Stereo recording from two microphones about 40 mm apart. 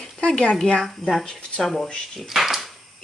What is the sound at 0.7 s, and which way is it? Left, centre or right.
Speech, centre.